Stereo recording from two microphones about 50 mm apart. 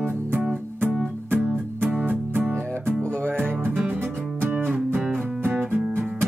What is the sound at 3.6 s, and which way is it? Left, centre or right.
Music, right.